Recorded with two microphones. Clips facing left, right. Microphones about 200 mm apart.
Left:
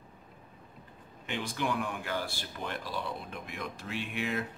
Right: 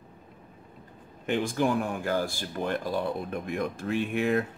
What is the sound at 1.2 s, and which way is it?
Speech, 50° right (ahead or behind).